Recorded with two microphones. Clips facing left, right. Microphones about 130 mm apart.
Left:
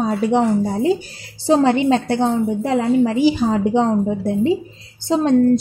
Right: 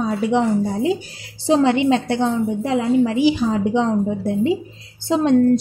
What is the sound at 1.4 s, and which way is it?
A woman's voice, 40° left (ahead or behind).